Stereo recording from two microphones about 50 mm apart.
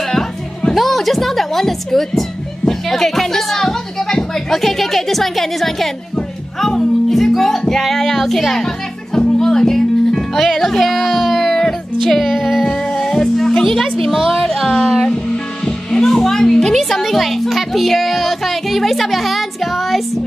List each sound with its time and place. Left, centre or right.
0.7 s speech: centre
6.6 s music: centre
12.3 s music: centre
12.6 s music: centre
15.6 s speech: centre